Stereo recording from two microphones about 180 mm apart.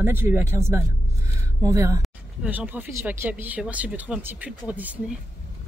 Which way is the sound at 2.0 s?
5° right (ahead or behind).